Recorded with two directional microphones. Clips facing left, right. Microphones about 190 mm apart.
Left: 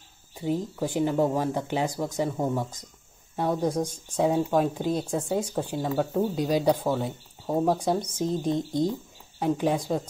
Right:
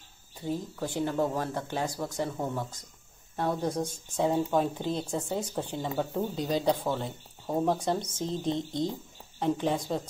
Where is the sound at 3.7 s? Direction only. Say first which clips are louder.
Left 4 dB; centre (ahead or behind).